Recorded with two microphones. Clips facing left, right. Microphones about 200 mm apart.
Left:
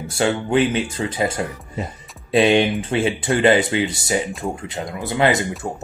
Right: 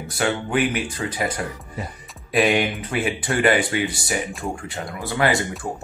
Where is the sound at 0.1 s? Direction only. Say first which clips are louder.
Left 4 dB; 25° left (ahead or behind).